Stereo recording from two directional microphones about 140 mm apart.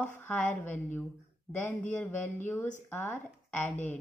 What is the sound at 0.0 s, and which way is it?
A woman's voice, 15° left (ahead or behind).